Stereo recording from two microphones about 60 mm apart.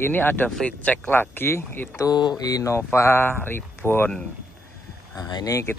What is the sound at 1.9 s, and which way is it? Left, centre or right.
Speech, left.